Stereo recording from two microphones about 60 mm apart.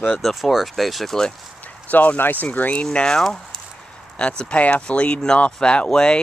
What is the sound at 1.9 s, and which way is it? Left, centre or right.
Speech, left.